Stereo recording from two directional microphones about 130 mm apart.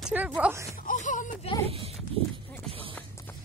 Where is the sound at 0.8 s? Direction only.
75° left (ahead or behind).